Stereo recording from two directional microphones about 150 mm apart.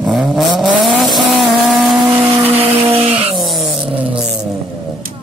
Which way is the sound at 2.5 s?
40° right (ahead or behind).